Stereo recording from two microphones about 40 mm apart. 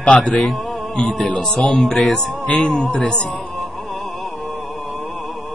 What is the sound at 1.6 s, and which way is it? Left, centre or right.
Speech, centre.